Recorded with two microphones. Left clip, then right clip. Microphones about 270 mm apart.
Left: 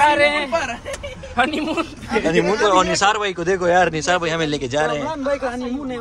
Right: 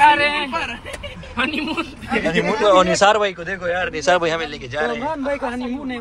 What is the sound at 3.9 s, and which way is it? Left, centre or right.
A man's voice, centre.